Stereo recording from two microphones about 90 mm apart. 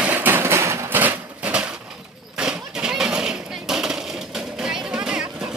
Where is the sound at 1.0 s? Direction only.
20° right (ahead or behind).